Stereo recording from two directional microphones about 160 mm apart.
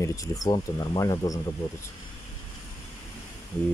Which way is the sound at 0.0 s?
20° left (ahead or behind).